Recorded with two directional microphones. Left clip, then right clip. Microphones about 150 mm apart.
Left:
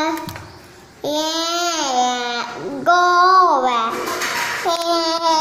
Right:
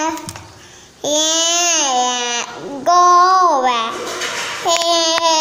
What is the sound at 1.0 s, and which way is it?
Babbling, 15° right (ahead or behind).